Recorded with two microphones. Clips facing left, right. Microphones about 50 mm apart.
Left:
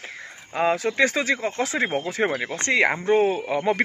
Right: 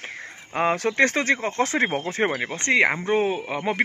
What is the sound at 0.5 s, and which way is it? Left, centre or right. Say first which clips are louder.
Speech: even; right.